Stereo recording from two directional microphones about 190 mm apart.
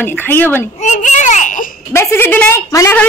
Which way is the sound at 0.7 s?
40° left (ahead or behind).